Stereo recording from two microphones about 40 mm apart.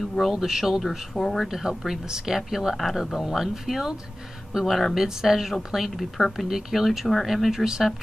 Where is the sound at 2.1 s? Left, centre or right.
Centre.